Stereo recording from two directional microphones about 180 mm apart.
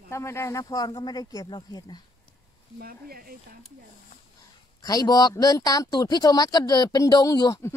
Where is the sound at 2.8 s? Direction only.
55° right (ahead or behind).